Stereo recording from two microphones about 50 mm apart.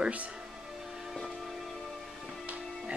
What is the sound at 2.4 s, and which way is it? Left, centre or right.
Music, right.